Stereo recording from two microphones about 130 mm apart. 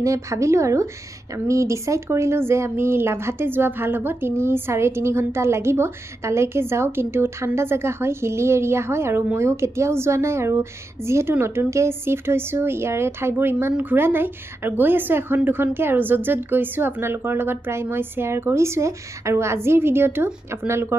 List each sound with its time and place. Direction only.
0.0 s speech: 25° right (ahead or behind)